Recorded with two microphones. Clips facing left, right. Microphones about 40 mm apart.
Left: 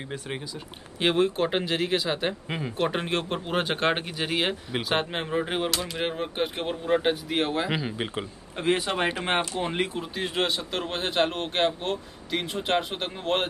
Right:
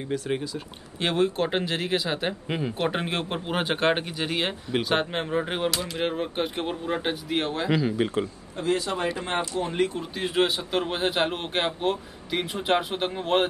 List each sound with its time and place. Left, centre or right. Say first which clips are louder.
0.9 s speech: left 1 dB; centre
7.7 s speech: right 5 dB; centre
8.5 s speech: left 1 dB; left
9.6 s speech: right 2 dB; left
10.1 s speech: right 2 dB; centre